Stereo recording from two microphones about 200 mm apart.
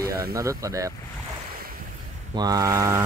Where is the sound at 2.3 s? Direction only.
20° right (ahead or behind).